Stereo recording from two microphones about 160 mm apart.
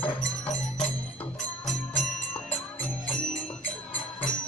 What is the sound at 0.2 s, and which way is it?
Music, 5° left (ahead or behind).